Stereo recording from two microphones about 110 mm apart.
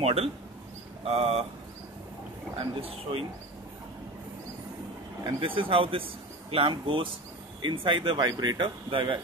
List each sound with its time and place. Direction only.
0.0 s speech: 65° right (ahead or behind)
2.8 s speech: 60° right (ahead or behind)
5.2 s speech: 50° right (ahead or behind)